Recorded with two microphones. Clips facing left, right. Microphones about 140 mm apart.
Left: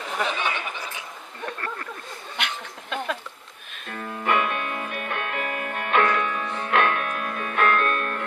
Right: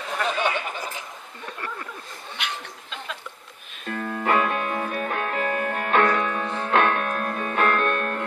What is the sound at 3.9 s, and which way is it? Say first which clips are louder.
Music: right 2 dB; 35° right (ahead or behind).